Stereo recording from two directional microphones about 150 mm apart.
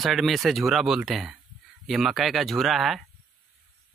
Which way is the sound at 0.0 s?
Centre (ahead or behind).